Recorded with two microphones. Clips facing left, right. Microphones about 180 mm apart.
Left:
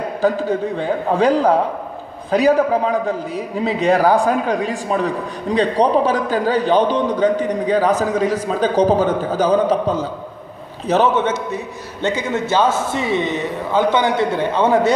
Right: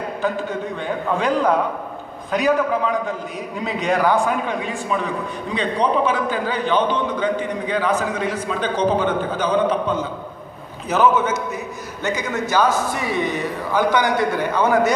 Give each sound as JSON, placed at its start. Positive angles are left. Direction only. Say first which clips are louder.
{"t": 0.2, "sound": "a man's voice", "louder": "left 7 dB", "side_deg": 35}